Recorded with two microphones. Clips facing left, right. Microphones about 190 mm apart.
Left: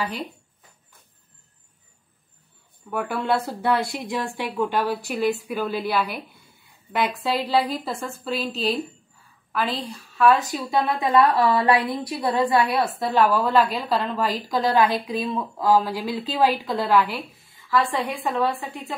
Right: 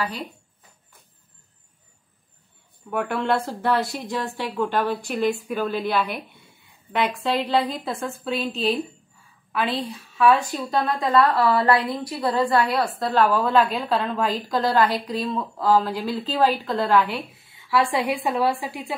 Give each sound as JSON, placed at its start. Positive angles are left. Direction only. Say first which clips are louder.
{"t": 2.9, "sound": "a woman's voice", "louder": "right 1 dB", "side_deg": 0}
{"t": 10.8, "sound": "a woman's voice", "louder": "left 1 dB", "side_deg": 15}
{"t": 17.6, "sound": "a woman's voice", "louder": "right 2 dB", "side_deg": -10}